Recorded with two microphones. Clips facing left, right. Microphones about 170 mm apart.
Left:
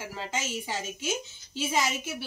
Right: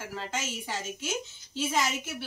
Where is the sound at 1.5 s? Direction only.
5° left (ahead or behind).